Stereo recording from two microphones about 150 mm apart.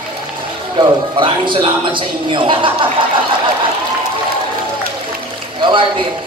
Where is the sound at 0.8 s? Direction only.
35° right (ahead or behind).